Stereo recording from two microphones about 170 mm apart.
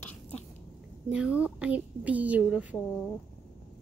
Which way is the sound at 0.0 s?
10° left (ahead or behind).